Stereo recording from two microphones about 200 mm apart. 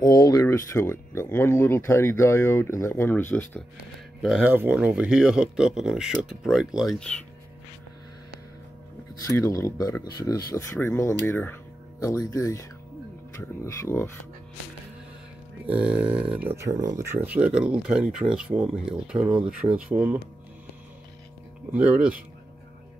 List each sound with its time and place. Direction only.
0.0 s speech: 20° left (ahead or behind)
4.2 s speech: centre (ahead or behind)
9.2 s speech: 15° left (ahead or behind)
15.6 s speech: 5° right (ahead or behind)
21.7 s speech: 5° right (ahead or behind)